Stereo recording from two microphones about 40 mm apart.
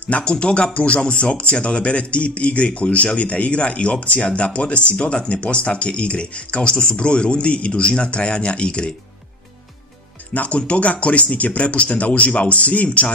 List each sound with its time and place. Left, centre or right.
0.2 s speech: left
10.3 s speech: left